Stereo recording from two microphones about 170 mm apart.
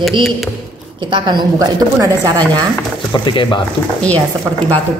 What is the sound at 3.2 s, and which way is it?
Speech, 30° left (ahead or behind).